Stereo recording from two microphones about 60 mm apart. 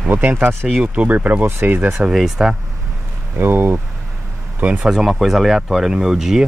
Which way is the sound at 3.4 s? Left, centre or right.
Right.